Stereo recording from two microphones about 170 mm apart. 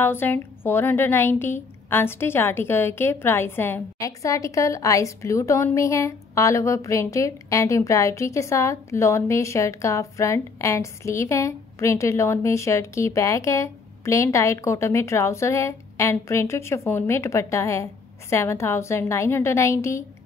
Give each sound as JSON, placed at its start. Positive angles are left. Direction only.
{"t": 0.0, "sound": "speech", "side_deg": 15}